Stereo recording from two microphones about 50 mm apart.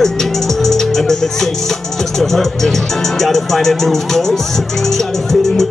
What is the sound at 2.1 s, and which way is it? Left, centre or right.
Speech, centre.